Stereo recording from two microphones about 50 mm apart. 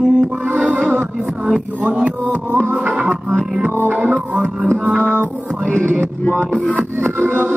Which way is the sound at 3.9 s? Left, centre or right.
Right.